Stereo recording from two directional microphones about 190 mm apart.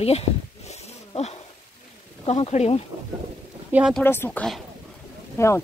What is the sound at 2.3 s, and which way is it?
Speech, 35° left (ahead or behind).